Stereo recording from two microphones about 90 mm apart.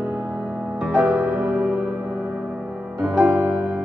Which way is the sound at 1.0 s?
5° right (ahead or behind).